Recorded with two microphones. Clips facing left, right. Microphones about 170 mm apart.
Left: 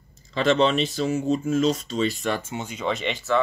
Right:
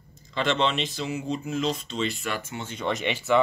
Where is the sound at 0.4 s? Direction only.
45° left (ahead or behind).